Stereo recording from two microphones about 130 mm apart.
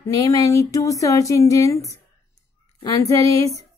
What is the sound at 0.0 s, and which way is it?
Speech, 25° left (ahead or behind).